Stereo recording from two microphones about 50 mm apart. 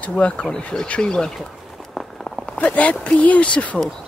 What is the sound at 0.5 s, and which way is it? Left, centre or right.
Speech, centre.